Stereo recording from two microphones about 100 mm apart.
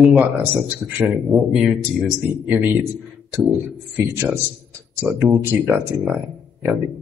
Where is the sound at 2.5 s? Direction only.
15° right (ahead or behind).